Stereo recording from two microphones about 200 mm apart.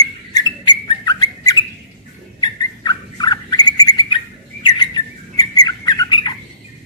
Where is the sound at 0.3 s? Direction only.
20° left (ahead or behind).